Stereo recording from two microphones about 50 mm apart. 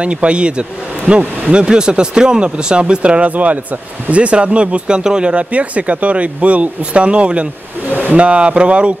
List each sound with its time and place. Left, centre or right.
0.0 s speech: right
7.9 s a sound: right
8.2 s speech: right